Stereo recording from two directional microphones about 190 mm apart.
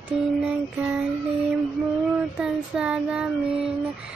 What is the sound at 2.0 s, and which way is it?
Child singing, 5° right (ahead or behind).